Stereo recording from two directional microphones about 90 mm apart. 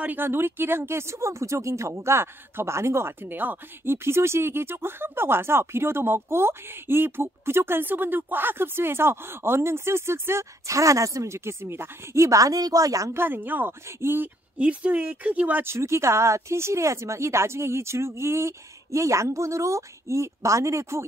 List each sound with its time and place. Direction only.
0.0 s speech: 20° right (ahead or behind); by 13.1 s 40° right (ahead or behind)
13.1 s speech: 25° right (ahead or behind)
14.6 s speech: 15° right (ahead or behind); by 21.0 s 35° right (ahead or behind)